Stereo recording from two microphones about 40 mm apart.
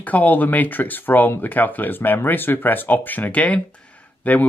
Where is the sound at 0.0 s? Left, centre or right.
Left.